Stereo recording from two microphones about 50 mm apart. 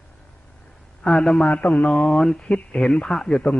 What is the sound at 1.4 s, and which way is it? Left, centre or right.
Speech, left.